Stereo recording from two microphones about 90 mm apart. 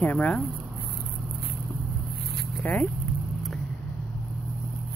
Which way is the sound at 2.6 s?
20° left (ahead or behind).